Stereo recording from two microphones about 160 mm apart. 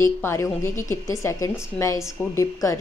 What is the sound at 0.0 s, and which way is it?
A woman's voice, 15° left (ahead or behind).